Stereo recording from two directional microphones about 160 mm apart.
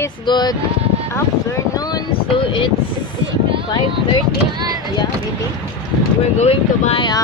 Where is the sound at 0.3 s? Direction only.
25° left (ahead or behind).